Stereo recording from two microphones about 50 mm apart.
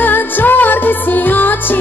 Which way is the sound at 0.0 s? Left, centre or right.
Left.